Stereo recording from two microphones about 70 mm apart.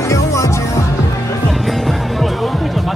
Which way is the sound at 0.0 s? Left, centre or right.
Left.